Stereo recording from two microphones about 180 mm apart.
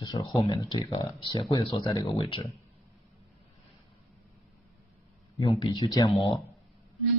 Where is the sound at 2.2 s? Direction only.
30° left (ahead or behind).